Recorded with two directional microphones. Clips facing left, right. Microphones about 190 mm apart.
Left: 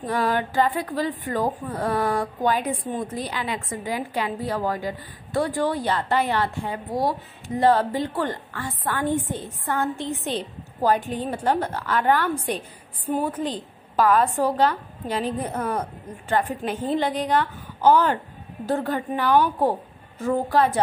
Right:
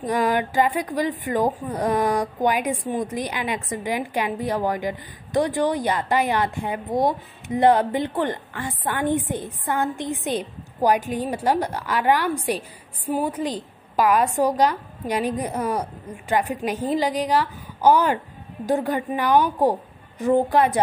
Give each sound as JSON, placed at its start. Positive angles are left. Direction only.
{"t": 0.0, "sound": "a woman's voice", "side_deg": -15}